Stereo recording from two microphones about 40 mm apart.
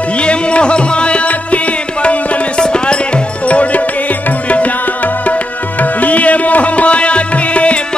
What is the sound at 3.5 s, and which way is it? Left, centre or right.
Music, left.